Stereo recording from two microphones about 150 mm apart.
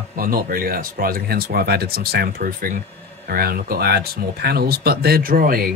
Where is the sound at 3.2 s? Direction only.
85° right; by 5.7 s 70° right (ahead or behind).